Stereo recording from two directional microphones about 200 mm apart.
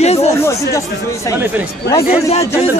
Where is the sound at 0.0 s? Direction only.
30° left (ahead or behind).